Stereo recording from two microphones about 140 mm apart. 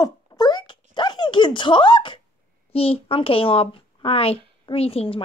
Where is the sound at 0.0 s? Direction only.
30° left (ahead or behind).